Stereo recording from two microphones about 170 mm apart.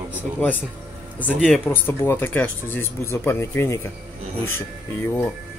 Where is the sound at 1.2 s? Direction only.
10° left (ahead or behind).